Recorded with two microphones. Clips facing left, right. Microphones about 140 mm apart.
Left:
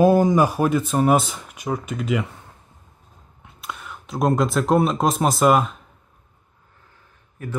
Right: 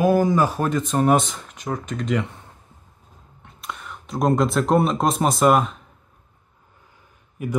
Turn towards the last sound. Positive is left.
turn(degrees=-15)  # may be behind; listen again after turning